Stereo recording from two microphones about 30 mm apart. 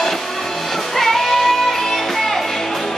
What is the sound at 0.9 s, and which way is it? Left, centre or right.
Music, centre.